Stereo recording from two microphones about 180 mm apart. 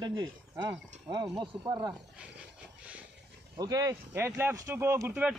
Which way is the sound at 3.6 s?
20° right (ahead or behind).